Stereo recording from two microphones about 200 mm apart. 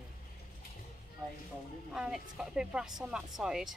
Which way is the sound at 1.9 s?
Centre (ahead or behind).